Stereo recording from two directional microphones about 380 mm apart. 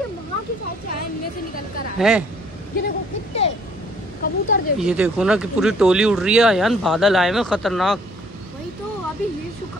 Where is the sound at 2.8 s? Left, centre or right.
Left.